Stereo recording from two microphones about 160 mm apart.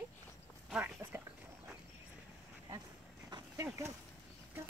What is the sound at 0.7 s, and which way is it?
Dog, 10° right (ahead or behind).